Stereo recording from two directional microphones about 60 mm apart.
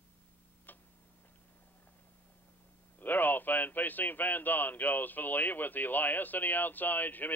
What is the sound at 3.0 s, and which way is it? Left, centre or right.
Speech, left.